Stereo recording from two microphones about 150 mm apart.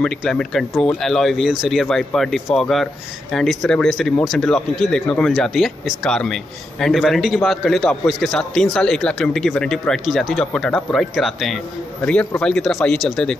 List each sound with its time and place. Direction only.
0.0 s speech: 5° left (ahead or behind)